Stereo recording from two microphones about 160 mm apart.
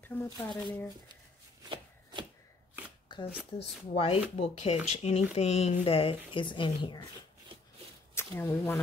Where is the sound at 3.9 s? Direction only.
35° left (ahead or behind).